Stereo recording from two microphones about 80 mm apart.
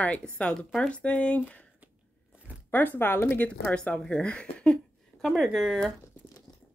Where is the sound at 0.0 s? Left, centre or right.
Centre.